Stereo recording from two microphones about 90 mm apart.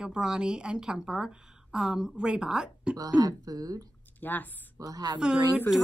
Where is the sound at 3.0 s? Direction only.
45° right (ahead or behind).